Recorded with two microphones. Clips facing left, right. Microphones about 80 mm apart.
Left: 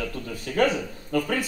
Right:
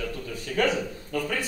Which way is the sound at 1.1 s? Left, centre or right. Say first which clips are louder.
Left 4 dB; left.